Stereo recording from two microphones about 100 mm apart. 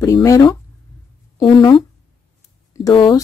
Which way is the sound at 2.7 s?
30° left (ahead or behind).